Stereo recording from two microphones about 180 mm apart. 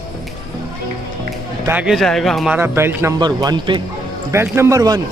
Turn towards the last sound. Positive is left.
turn(degrees=-20)  # may be behind; listen again after turning